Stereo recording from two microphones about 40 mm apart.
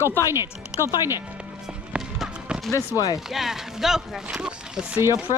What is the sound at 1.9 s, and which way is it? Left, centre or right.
Music, right.